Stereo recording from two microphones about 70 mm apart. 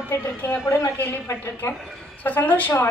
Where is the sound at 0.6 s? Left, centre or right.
Left.